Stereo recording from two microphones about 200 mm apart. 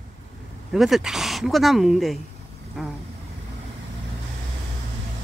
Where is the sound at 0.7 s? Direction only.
Centre (ahead or behind).